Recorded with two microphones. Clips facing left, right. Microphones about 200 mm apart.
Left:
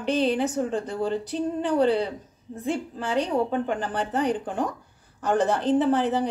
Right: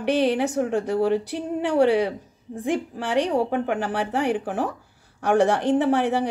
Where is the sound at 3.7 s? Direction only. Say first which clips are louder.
Right 3 dB; 75° right (ahead or behind).